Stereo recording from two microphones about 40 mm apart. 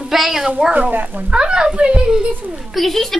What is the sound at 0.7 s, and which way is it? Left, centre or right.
Speech, right.